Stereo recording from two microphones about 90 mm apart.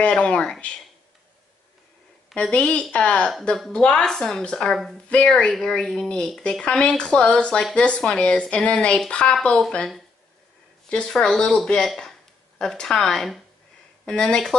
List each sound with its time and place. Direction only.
0.0 s speech: 15° left (ahead or behind)
2.3 s speech: 10° left (ahead or behind)
5.1 s speech: 10° left (ahead or behind)